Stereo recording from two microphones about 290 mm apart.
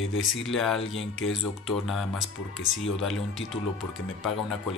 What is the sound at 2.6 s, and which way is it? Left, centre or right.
Speech, left.